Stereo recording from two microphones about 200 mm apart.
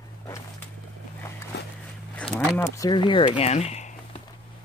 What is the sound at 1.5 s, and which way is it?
Walk, 60° left (ahead or behind).